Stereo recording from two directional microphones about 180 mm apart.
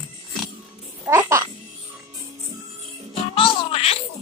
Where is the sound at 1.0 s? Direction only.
15° right (ahead or behind).